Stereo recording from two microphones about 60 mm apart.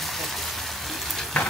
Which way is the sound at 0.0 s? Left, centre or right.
Centre.